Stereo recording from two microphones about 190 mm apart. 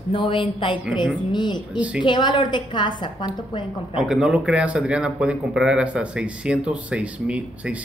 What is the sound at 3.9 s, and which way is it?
A man's voice, 5° right (ahead or behind).